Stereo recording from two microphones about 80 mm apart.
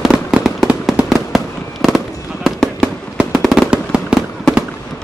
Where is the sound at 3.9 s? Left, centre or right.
Centre.